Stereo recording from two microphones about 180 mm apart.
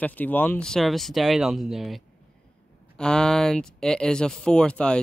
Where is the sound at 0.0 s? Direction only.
10° left (ahead or behind).